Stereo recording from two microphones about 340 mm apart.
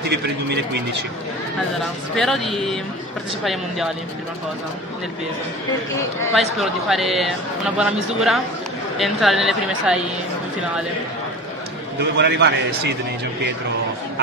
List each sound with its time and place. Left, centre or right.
0.1 s a man's voice: right
2.1 s speech: centre
6.6 s speech: centre
12.0 s a man's voice: right